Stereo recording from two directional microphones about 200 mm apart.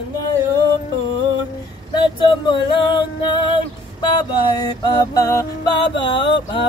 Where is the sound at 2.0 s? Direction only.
20° left (ahead or behind).